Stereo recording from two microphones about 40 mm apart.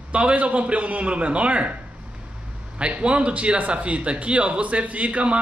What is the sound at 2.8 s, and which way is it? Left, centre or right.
Speech, right.